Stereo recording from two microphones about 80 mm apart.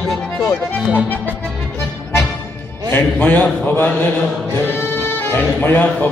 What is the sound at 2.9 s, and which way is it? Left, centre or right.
A man's voice, left.